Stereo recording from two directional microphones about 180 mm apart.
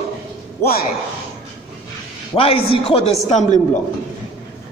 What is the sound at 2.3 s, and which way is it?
A man's voice, 30° left (ahead or behind).